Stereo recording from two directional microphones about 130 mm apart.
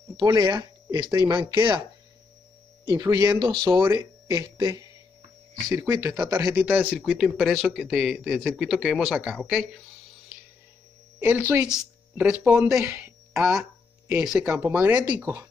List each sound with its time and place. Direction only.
0.2 s speech: 30° right (ahead or behind)
2.8 s speech: 30° right (ahead or behind)
6.6 s speech: 15° right (ahead or behind)
7.1 s speech: centre (ahead or behind)
11.1 s speech: 15° right (ahead or behind)